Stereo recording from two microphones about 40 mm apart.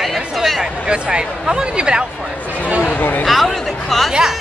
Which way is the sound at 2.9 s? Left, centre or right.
Left.